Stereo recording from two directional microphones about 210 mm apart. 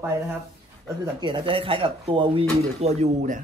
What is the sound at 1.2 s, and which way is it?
Speech, 20° right (ahead or behind).